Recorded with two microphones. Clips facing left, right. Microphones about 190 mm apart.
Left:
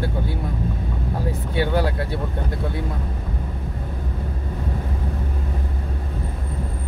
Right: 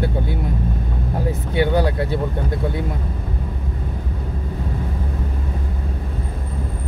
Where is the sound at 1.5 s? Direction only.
20° right (ahead or behind).